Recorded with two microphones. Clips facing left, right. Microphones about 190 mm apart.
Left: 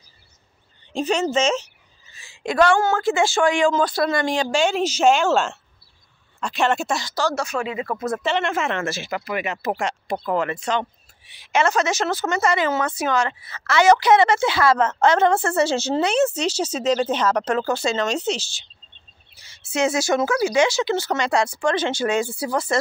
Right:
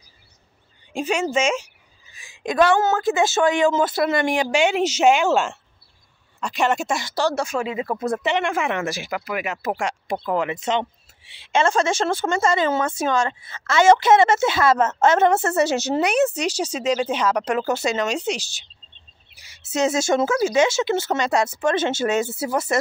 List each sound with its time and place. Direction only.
0.9 s a woman's voice: 10° right (ahead or behind)